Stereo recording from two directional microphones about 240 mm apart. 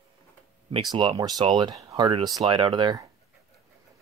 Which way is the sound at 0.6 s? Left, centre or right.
Right.